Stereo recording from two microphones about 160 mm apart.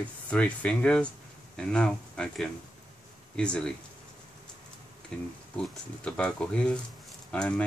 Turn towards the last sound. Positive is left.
turn(degrees=5)  # may be behind; listen again after turning